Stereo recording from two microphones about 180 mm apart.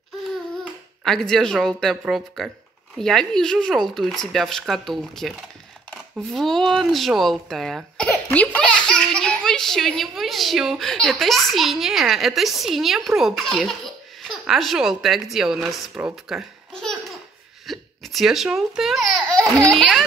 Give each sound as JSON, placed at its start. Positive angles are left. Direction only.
{"t": 1.0, "sound": "speech", "side_deg": 5}